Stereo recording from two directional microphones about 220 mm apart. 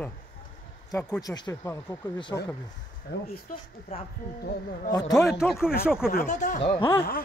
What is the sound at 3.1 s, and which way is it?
Speech, 50° left (ahead or behind).